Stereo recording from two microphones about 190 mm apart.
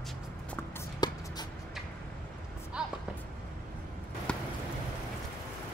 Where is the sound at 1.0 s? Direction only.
20° left (ahead or behind).